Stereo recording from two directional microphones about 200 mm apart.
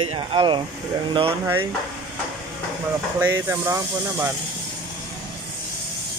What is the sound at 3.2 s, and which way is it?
Speech, 10° right (ahead or behind).